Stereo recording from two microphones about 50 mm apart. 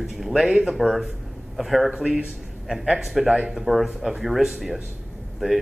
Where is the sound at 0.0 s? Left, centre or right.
Centre.